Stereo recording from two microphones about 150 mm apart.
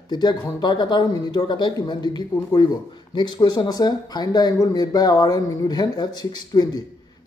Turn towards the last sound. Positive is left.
turn(degrees=25)  # may be behind; listen again after turning